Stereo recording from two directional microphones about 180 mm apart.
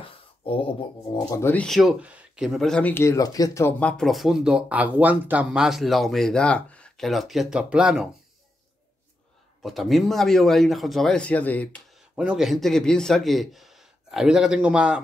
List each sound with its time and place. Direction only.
0.0 s a sound: 30° left (ahead or behind)
1.3 s speech: 10° left (ahead or behind)
3.9 s speech: centre (ahead or behind)
9.6 s speech: centre (ahead or behind)
12.2 s speech: 5° right (ahead or behind)